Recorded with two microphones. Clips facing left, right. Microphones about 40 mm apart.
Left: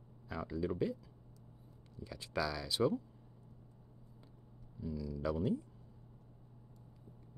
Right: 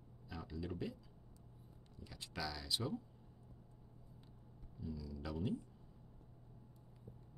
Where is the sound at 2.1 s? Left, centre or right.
Left.